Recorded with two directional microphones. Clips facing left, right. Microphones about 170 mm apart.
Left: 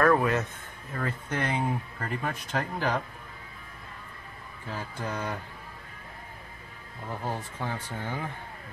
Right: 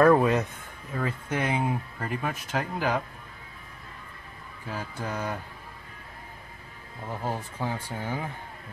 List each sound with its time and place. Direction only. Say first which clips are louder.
0.0 s speech: right 4 dB; 20° right (ahead or behind)
4.6 s speech: right 1 dB; 10° right (ahead or behind)
7.1 s speech: right 2 dB; 10° right (ahead or behind)